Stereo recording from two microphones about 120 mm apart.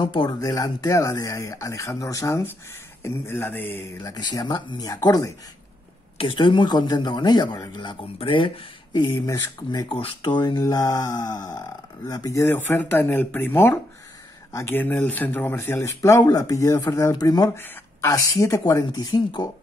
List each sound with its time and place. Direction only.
0.0 s speech: 45° left (ahead or behind)
0.4 s speech: 30° left (ahead or behind)
4.0 s speech: 35° left (ahead or behind)
6.1 s speech: 45° left (ahead or behind)
17.6 s a sound: 20° left (ahead or behind)
18.1 s speech: 30° left (ahead or behind)